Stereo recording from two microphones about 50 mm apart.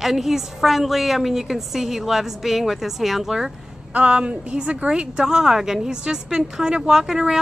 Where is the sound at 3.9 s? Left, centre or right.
Right.